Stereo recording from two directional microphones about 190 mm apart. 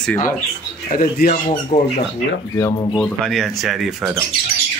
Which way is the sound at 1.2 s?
55° left (ahead or behind).